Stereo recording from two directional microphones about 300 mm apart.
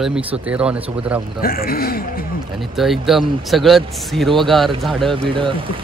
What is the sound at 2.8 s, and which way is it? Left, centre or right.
Speech, centre.